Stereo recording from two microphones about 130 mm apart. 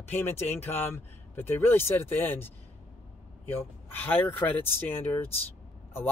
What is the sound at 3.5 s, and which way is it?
Speech, 15° left (ahead or behind).